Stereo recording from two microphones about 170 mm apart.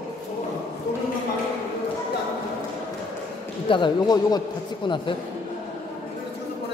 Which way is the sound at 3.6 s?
30° left (ahead or behind).